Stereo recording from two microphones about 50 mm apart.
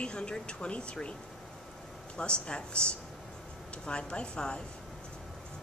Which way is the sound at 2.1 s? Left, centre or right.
Centre.